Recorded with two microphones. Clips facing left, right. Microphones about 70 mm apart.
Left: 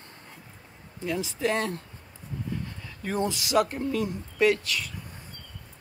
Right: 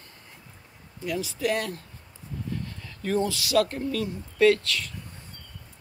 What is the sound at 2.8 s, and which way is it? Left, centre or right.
Speech, centre.